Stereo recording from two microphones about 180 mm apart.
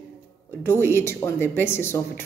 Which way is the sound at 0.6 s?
15° left (ahead or behind).